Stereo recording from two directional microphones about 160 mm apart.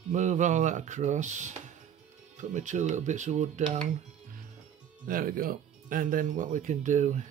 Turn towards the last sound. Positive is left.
turn(degrees=-50)  # may be behind; listen again after turning